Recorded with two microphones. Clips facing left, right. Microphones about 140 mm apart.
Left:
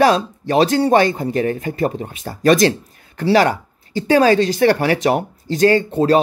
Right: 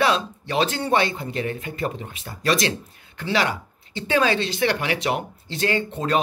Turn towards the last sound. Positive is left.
turn(degrees=35)  # may be behind; listen again after turning